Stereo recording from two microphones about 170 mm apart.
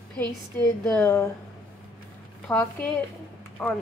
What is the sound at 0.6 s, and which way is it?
Speech, 15° left (ahead or behind).